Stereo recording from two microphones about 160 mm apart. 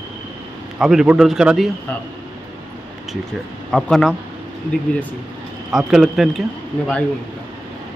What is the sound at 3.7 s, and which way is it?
Speech, 5° left (ahead or behind).